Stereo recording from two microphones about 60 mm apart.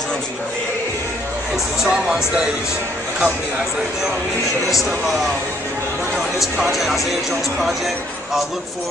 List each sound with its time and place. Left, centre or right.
1.9 s speech: centre
4.6 s speech: centre
6.7 s speech: centre